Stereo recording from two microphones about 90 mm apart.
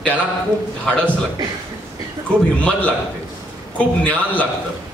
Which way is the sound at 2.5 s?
15° left (ahead or behind).